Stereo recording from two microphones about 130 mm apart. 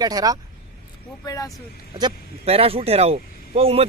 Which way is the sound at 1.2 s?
25° left (ahead or behind).